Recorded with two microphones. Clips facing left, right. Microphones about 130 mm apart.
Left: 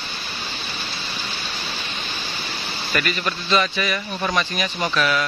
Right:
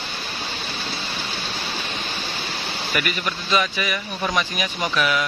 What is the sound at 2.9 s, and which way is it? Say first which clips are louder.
Speech: left 2 dB; 10° right (ahead or behind).